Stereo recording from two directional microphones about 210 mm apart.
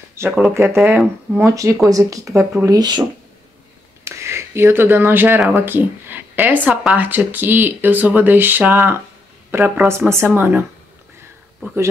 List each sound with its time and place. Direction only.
0.1 s speech: 10° right (ahead or behind)
11.6 s speech: 10° right (ahead or behind)